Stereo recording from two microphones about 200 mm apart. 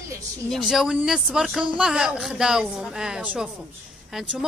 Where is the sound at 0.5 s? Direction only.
Centre (ahead or behind).